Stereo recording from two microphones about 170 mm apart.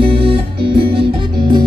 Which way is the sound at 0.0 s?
30° right (ahead or behind).